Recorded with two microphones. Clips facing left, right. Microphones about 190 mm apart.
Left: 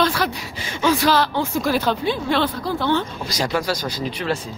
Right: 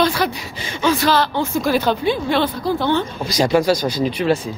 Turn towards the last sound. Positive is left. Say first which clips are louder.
# right 6 dB
turn(degrees=-15)  # may be behind; listen again after turning